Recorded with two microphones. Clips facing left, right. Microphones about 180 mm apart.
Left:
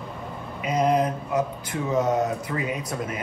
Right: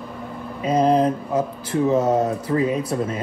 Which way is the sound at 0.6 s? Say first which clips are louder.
Right 5 dB; 30° right (ahead or behind).